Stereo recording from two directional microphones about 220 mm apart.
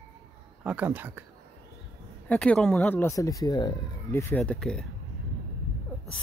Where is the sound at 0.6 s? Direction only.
5° right (ahead or behind).